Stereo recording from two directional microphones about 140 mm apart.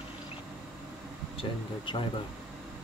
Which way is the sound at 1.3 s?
35° left (ahead or behind).